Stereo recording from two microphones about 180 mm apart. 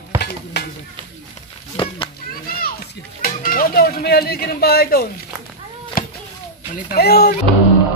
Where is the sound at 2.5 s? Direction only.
55° left (ahead or behind).